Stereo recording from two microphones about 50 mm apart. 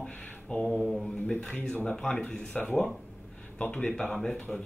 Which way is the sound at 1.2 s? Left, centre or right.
Centre.